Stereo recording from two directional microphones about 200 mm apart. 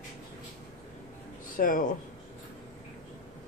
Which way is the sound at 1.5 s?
45° left (ahead or behind).